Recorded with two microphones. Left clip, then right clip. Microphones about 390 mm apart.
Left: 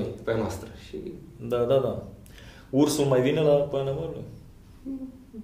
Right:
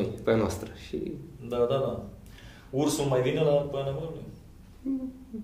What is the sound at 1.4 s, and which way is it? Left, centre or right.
Speech, left.